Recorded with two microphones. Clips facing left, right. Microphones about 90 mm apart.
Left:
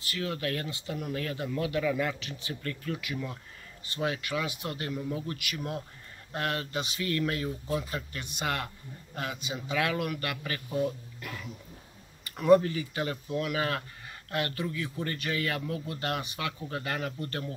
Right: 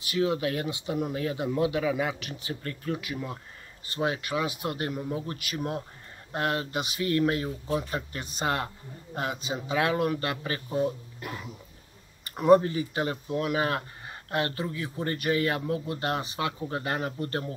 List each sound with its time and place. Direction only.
0.0 s speech: 20° right (ahead or behind)
2.1 s speech: 25° left (ahead or behind)
2.4 s speech: 30° right (ahead or behind)